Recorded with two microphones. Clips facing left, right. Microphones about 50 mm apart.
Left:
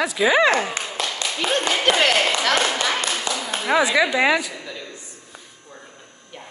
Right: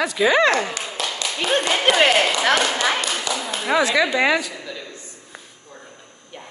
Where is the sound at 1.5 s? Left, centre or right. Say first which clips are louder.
Right 2 dB; centre.